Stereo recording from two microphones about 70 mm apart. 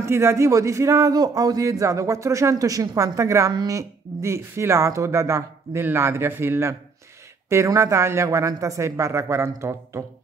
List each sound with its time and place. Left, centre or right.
0.0 s a man's voice: right